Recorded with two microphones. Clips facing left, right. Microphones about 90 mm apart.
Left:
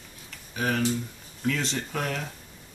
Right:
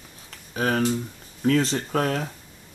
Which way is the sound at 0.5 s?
40° right (ahead or behind).